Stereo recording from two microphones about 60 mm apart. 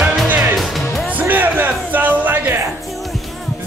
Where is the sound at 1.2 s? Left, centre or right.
Right.